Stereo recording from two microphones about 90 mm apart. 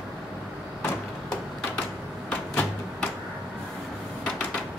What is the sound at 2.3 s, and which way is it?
Door, 15° left (ahead or behind).